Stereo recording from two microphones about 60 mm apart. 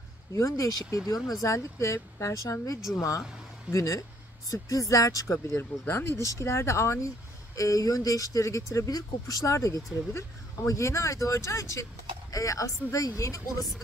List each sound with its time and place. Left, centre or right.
0.3 s speech: left
0.9 s speech: left
1.4 s speech: left
7.5 s speech: left